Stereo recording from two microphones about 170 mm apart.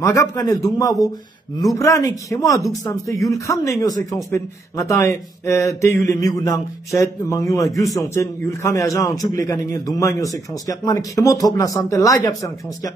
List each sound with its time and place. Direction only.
0.0 s a man's voice: 20° left (ahead or behind)